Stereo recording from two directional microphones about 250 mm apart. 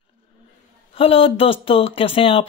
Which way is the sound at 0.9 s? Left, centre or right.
Left.